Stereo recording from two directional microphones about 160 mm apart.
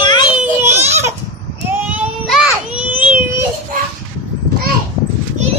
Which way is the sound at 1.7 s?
10° right (ahead or behind).